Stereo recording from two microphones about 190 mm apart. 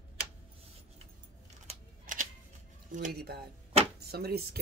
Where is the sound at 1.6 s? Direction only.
45° right (ahead or behind).